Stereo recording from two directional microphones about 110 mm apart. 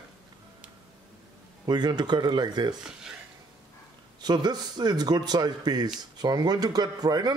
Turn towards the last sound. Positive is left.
turn(degrees=-40)  # may be behind; listen again after turning